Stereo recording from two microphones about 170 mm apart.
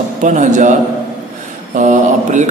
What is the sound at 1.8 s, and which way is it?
Speech, 45° right (ahead or behind).